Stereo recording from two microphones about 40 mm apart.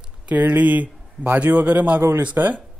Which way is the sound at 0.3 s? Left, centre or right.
Right.